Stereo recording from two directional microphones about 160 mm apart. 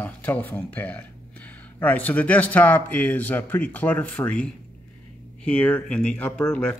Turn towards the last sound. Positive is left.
turn(degrees=5)  # may be behind; listen again after turning